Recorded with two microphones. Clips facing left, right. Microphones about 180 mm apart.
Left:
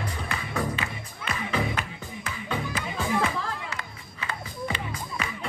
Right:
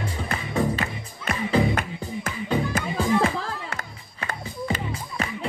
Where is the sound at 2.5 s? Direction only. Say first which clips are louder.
Right 6 dB; 35° right (ahead or behind).